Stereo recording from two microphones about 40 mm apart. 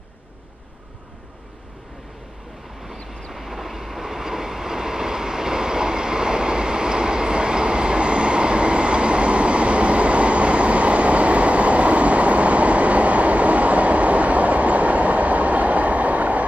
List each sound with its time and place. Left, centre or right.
2.8 s vehicle: centre; by 16.4 s right